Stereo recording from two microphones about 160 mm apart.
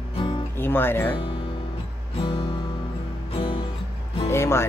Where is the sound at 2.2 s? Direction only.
35° left (ahead or behind).